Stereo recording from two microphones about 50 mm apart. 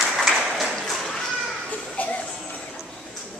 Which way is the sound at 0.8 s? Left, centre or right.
Centre.